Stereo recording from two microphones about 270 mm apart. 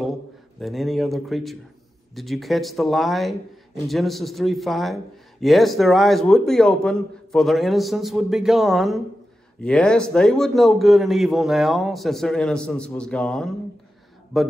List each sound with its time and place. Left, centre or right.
0.6 s a man's voice: centre